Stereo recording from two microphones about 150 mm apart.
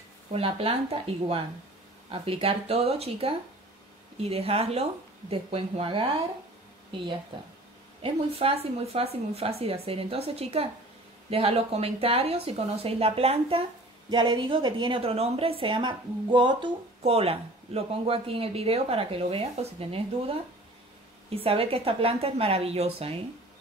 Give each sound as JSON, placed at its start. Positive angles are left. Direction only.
{"t": 0.3, "sound": "a woman's voice", "side_deg": -40}
{"t": 8.0, "sound": "a woman's voice", "side_deg": -40}